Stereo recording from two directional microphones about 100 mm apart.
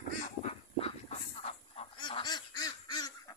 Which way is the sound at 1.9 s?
55° left (ahead or behind).